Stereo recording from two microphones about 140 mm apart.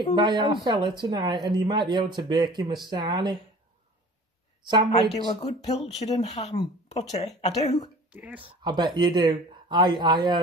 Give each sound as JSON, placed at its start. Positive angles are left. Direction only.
{"t": 0.1, "sound": "speech", "side_deg": -35}
{"t": 4.6, "sound": "speech", "side_deg": -30}
{"t": 5.2, "sound": "speech", "side_deg": 45}
{"t": 8.1, "sound": "speech", "side_deg": -10}
{"t": 8.6, "sound": "speech", "side_deg": -30}